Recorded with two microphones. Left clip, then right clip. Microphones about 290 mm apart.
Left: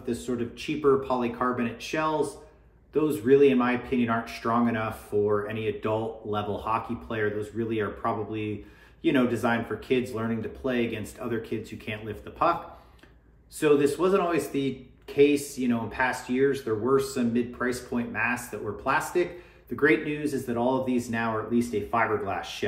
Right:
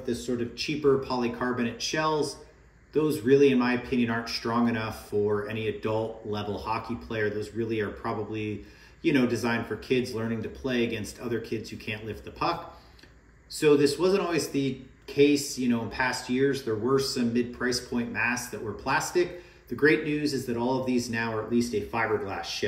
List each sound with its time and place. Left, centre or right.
0.0 s a man's voice: centre
13.6 s a man's voice: centre